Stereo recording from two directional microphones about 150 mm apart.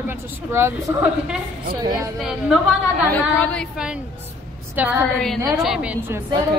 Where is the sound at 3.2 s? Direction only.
10° left (ahead or behind).